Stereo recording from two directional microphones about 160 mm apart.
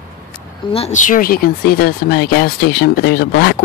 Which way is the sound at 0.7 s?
45° left (ahead or behind).